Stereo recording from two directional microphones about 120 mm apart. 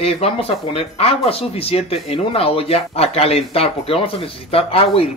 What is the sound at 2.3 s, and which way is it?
Speech, 55° left (ahead or behind).